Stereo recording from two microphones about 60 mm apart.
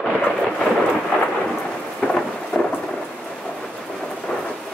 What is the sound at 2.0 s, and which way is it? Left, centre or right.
Thunder, centre.